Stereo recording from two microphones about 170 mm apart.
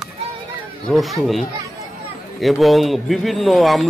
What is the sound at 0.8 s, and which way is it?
Speech, centre (ahead or behind).